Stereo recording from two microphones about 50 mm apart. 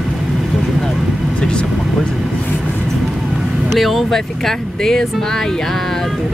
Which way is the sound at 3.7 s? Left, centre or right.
Centre.